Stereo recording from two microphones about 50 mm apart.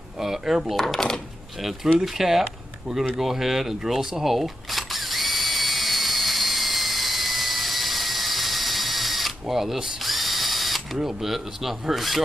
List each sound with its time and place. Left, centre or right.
0.2 s speech: centre
0.7 s speech: centre
2.0 s speech: centre
3.2 s camera: centre